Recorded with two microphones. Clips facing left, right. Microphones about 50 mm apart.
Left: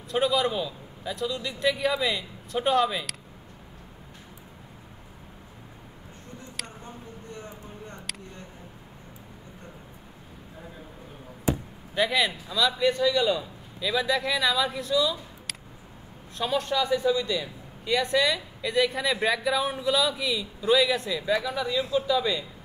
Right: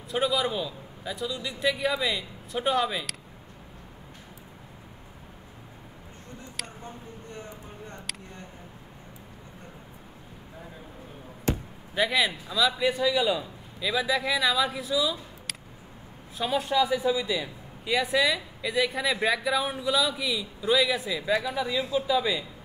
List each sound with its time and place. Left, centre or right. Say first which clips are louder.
0.1 s a man's voice: left 2 dB; centre
11.9 s a man's voice: even; centre